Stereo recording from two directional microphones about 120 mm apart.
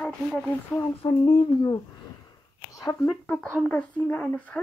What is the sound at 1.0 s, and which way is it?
Speech, 40° left (ahead or behind).